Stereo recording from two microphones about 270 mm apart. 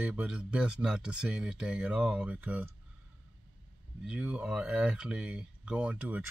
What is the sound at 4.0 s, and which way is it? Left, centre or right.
Speech, centre.